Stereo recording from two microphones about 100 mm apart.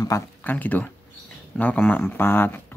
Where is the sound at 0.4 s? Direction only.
15° left (ahead or behind).